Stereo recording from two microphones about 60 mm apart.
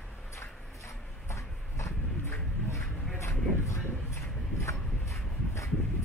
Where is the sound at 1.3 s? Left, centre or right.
Left.